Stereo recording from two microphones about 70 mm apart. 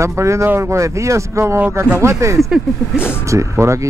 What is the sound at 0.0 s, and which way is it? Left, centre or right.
Speech, right.